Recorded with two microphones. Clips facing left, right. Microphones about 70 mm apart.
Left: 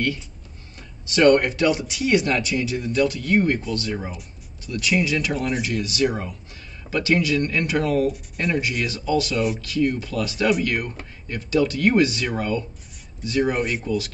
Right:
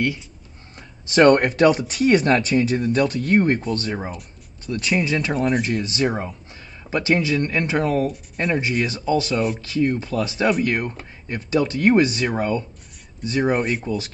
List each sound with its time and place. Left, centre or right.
0.7 s speech: right